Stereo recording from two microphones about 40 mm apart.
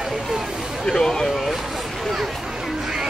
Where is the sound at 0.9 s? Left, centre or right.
Centre.